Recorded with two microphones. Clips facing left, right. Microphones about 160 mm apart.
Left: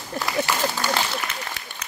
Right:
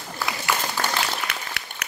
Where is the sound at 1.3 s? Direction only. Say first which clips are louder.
Even; 70° right (ahead or behind).